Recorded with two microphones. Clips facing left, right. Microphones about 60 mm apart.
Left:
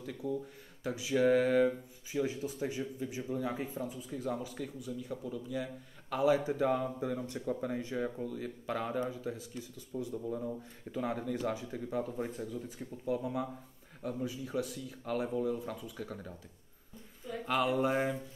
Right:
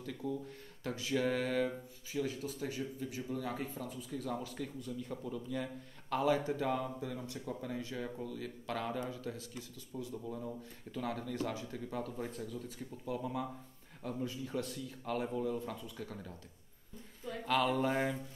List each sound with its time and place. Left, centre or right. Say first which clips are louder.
0.0 s speech: left 3 dB; centre
1.4 s mantra: left 6 dB; centre
2.1 s speech: left 3 dB; centre
17.5 s speech: left 1 dB; centre